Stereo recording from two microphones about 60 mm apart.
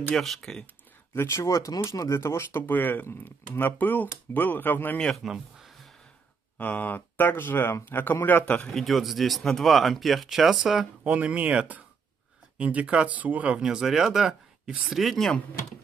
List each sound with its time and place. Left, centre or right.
0.1 s speech: centre
1.1 s speech: left
2.6 s speech: left
5.1 s a sound: centre
6.6 s speech: left
8.7 s speech: centre
11.1 s speech: right
13.6 s speech: centre